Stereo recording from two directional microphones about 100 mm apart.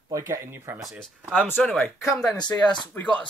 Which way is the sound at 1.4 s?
20° left (ahead or behind).